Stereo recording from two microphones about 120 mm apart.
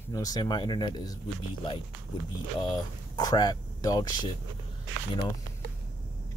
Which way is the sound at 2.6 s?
35° left (ahead or behind).